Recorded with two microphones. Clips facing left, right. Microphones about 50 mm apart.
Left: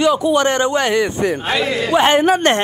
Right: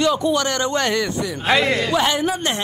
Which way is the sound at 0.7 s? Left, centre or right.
Centre.